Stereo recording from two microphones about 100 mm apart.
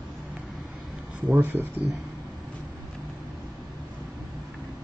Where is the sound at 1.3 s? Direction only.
20° right (ahead or behind).